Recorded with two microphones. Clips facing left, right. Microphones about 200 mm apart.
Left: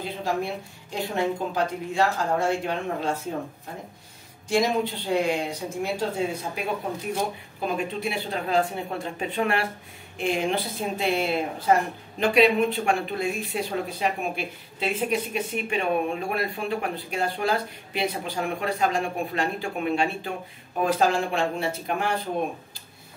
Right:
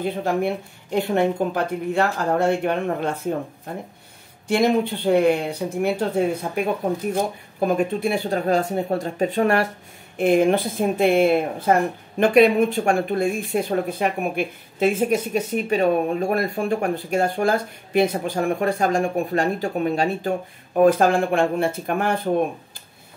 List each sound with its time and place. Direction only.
0.0 s a woman's voice: 55° right (ahead or behind)
4.5 s a woman's voice: 60° right (ahead or behind)
7.6 s speech: 45° right (ahead or behind)
10.1 s speech: 55° right (ahead or behind)
20.8 s speech: 55° right (ahead or behind)